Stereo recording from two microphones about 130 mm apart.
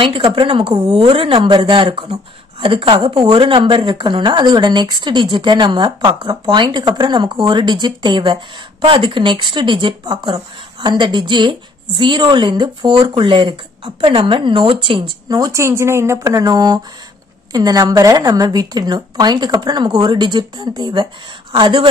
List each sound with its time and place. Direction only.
0.0 s a woman's voice: 40° right (ahead or behind)
15.2 s speech: 30° right (ahead or behind)